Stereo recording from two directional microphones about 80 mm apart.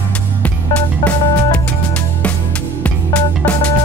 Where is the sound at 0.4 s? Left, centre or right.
Centre.